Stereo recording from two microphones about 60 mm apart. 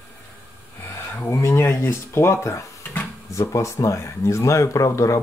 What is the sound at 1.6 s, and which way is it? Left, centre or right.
Speech, left.